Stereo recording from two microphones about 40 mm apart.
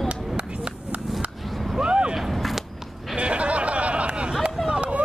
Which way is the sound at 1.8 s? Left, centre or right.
Right.